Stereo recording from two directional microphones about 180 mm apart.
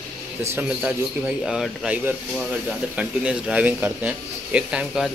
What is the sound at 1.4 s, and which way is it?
Speech, 5° right (ahead or behind).